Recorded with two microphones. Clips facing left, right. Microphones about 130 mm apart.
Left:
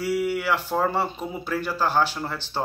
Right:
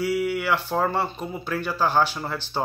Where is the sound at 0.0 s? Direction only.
5° left (ahead or behind).